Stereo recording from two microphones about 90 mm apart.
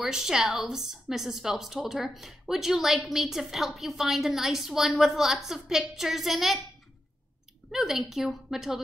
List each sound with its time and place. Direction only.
0.0 s a woman's voice: 5° right (ahead or behind)
7.7 s a woman's voice: 5° right (ahead or behind)